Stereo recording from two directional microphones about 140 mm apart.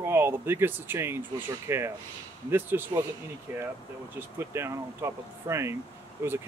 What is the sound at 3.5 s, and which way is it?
Speech, 15° right (ahead or behind).